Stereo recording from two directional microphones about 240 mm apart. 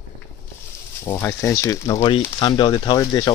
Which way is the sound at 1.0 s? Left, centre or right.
Centre.